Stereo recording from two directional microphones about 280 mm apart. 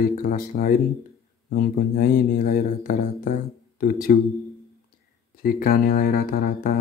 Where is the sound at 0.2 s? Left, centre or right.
Left.